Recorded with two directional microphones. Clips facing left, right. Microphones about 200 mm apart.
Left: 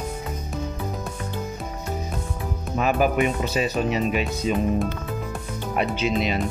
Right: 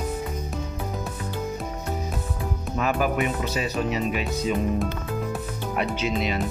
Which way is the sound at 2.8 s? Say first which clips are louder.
Left 3 dB; 20° left (ahead or behind).